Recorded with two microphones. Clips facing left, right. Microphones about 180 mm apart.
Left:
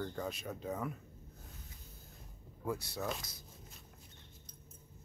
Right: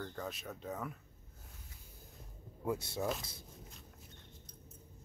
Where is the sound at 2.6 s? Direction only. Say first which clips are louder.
Right 2 dB; 25° right (ahead or behind).